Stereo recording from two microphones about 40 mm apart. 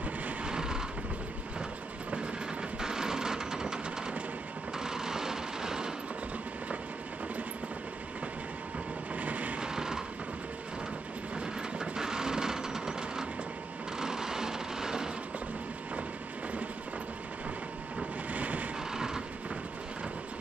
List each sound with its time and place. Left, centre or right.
0.5 s vehicle: centre
2.8 s a sound: centre
9.1 s vehicle: right
9.6 s vehicle: centre
11.3 s train: centre
13.9 s a sound: centre
18.3 s vehicle: right
18.9 s vehicle: centre